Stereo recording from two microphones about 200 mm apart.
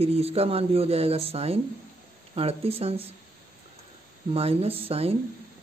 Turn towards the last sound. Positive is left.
turn(degrees=-30)  # may be behind; listen again after turning